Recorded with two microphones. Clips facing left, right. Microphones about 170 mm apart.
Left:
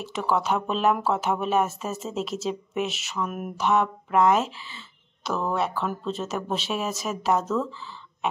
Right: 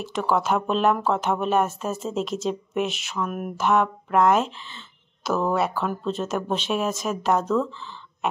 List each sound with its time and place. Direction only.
0.0 s speech: centre (ahead or behind)
3.3 s a sound: 50° right (ahead or behind)
3.5 s speech: centre (ahead or behind)
5.5 s speech: 5° right (ahead or behind)